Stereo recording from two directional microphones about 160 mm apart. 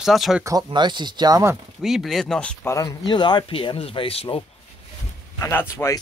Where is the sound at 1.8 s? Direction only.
Centre (ahead or behind).